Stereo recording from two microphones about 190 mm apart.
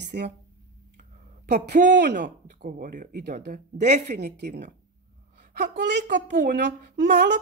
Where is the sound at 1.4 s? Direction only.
60° right (ahead or behind).